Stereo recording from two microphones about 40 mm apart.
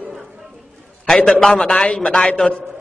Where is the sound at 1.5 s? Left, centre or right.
Left.